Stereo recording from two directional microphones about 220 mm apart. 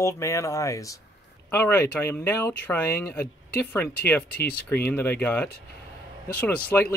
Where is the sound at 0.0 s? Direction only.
15° left (ahead or behind).